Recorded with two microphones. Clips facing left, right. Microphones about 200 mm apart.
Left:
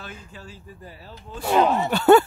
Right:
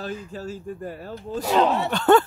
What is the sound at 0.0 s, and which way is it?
Speech, 40° right (ahead or behind).